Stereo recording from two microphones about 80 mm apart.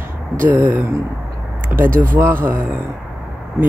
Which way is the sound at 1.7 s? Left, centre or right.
Right.